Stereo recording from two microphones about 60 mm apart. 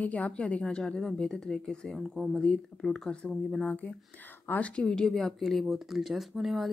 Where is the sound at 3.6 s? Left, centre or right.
Left.